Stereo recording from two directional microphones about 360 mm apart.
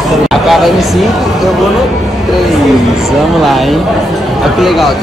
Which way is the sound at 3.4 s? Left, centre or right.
Centre.